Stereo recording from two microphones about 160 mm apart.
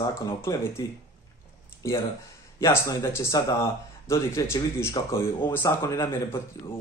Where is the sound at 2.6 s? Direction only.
15° left (ahead or behind).